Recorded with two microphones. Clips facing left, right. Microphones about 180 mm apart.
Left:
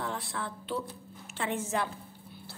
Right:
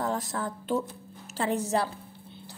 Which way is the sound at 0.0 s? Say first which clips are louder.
Right 6 dB; 40° right (ahead or behind).